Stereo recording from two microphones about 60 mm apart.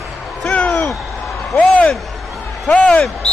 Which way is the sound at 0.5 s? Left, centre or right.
Left.